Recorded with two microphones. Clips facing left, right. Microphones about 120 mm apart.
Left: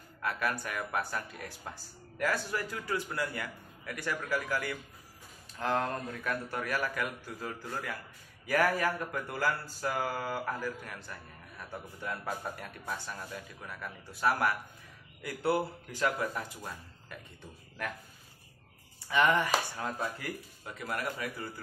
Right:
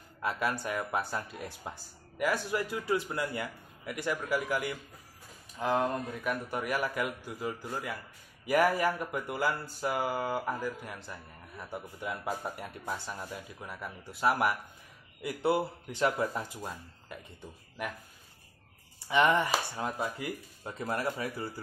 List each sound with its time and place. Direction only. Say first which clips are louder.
0.2 s a man's voice: right 2 dB; 20° right (ahead or behind)
19.0 s speech: right 1 dB; 20° right (ahead or behind)